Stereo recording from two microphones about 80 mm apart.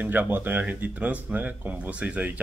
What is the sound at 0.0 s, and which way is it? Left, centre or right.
A man's voice, right.